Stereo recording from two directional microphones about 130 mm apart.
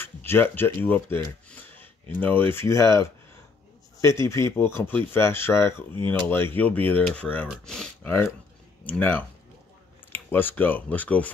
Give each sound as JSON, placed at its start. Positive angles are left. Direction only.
{"t": 0.0, "sound": "speech", "side_deg": 15}